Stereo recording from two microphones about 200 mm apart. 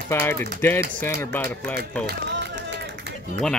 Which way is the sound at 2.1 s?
60° right (ahead or behind).